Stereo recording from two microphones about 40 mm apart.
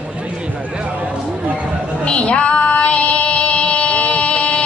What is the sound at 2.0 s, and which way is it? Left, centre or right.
Female singing, left.